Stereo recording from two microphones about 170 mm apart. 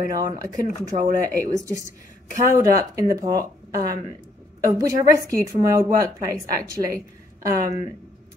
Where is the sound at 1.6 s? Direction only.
20° right (ahead or behind).